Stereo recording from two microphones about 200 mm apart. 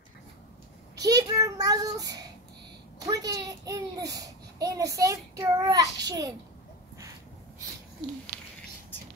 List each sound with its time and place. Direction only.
1.0 s child singing: 15° right (ahead or behind)
3.1 s a child's voice: 20° right (ahead or behind)